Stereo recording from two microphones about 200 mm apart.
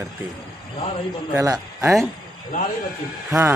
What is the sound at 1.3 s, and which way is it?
Speech, 15° right (ahead or behind).